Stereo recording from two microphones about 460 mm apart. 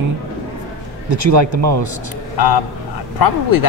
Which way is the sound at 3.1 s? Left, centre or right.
Left.